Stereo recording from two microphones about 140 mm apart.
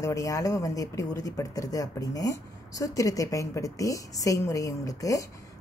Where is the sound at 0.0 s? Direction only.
25° left (ahead or behind).